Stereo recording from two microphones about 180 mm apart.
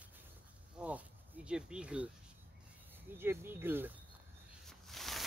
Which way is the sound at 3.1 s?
10° right (ahead or behind).